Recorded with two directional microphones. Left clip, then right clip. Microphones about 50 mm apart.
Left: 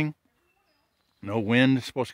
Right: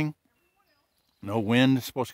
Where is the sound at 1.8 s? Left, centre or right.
Right.